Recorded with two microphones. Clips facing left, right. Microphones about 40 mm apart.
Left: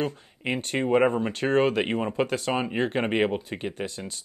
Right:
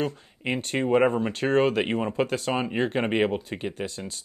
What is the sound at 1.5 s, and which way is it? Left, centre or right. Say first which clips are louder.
Speech: even; centre.